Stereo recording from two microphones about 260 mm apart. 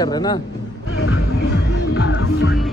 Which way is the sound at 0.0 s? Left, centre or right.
Centre.